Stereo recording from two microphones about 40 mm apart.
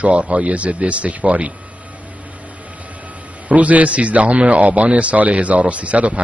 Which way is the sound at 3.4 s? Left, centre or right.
Right.